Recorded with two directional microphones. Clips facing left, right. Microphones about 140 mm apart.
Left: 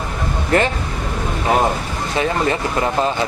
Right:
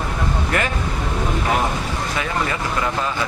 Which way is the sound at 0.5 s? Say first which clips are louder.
Left 8 dB; 30° left (ahead or behind).